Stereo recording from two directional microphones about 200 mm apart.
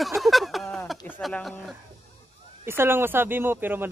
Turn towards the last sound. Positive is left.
turn(degrees=-10)  # may be behind; listen again after turning